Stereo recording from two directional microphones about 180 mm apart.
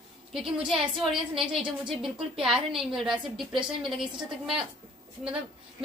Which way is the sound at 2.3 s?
Centre (ahead or behind).